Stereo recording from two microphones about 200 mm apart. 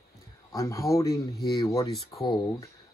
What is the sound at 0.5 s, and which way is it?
Speech, 15° left (ahead or behind).